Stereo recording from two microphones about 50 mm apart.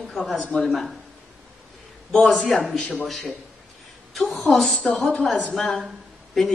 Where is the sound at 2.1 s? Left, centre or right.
Centre.